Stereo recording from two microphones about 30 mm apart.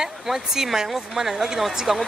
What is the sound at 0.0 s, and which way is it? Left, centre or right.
Speech, centre.